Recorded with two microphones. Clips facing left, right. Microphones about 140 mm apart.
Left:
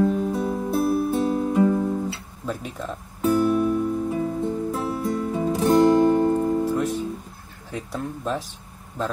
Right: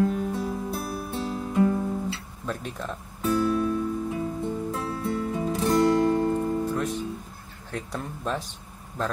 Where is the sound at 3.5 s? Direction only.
20° left (ahead or behind).